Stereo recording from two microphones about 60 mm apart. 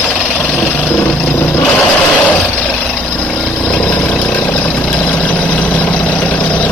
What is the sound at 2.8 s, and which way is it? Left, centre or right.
Vehicle, centre.